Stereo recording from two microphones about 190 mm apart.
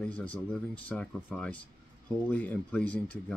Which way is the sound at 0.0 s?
5° left (ahead or behind).